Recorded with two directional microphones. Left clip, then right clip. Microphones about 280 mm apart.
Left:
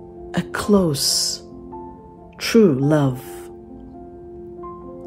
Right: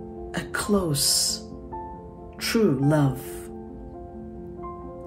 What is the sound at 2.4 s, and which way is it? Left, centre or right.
Speech, left.